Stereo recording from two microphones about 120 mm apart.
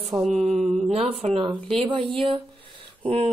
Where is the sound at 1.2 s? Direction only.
65° right (ahead or behind).